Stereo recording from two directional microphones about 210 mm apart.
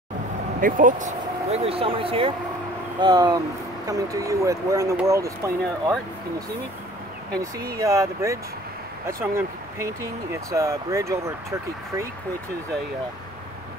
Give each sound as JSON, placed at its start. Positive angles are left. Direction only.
{"t": 0.6, "sound": "speech", "side_deg": -40}
{"t": 7.7, "sound": "speech", "side_deg": -15}